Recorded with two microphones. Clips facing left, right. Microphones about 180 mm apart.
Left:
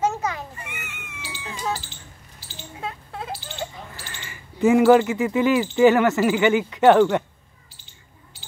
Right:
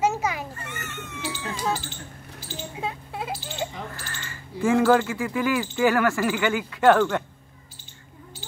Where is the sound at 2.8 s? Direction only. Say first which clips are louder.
Even; 10° right (ahead or behind).